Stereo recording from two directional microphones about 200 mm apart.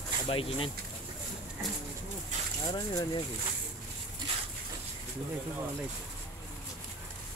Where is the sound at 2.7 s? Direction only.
20° left (ahead or behind).